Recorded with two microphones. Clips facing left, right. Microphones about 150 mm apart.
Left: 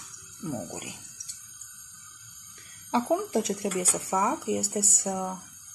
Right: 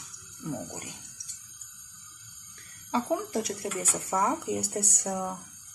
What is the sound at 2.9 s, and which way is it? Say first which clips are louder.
Speech: left 3 dB; 20° left (ahead or behind).